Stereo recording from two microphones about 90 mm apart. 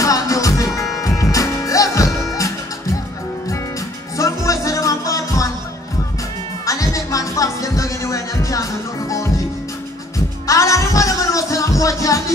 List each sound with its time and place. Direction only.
0.0 s music: 40° left (ahead or behind)
4.2 s music: 40° left (ahead or behind)
6.6 s music: 40° left (ahead or behind)
10.1 s music: 35° left (ahead or behind)